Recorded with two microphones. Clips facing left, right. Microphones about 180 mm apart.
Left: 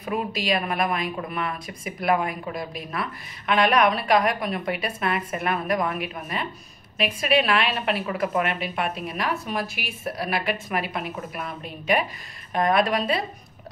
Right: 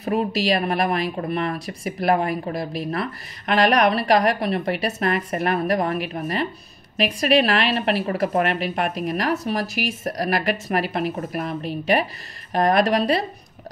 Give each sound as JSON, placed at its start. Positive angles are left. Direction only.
{"t": 0.0, "sound": "a woman's voice", "side_deg": -35}